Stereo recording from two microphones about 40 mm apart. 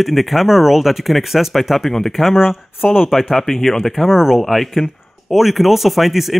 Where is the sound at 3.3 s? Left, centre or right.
Centre.